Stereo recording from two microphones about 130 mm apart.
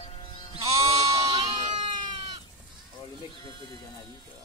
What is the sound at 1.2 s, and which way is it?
Goat, 40° right (ahead or behind).